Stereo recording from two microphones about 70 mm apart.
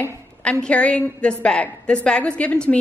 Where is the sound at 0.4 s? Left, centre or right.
Centre.